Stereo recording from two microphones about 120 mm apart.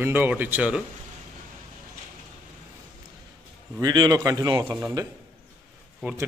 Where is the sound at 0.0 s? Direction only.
15° right (ahead or behind).